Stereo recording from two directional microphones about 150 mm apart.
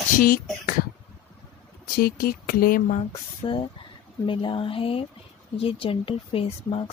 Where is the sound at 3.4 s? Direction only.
35° left (ahead or behind).